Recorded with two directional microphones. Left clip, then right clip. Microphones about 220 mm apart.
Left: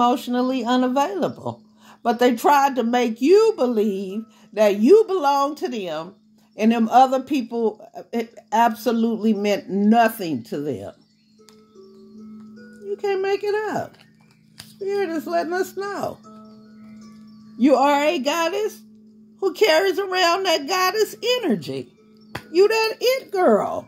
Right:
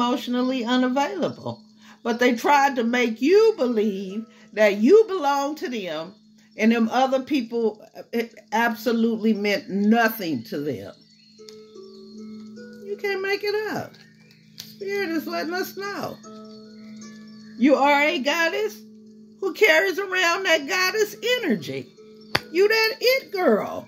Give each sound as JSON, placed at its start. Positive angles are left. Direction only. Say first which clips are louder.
{"t": 0.0, "sound": "speech", "louder": "left 4 dB", "side_deg": 45}
{"t": 12.9, "sound": "speech", "louder": "left 3 dB", "side_deg": 45}
{"t": 17.6, "sound": "speech", "louder": "left 1 dB", "side_deg": 45}